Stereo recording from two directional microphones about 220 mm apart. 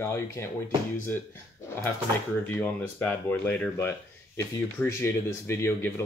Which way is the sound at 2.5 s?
10° left (ahead or behind).